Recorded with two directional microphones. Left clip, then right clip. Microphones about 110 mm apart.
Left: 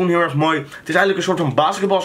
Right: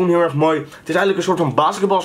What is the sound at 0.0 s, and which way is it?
Speech, centre (ahead or behind).